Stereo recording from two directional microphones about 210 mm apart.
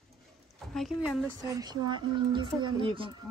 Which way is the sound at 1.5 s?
20° right (ahead or behind).